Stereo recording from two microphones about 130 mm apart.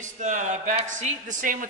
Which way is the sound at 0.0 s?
70° right (ahead or behind).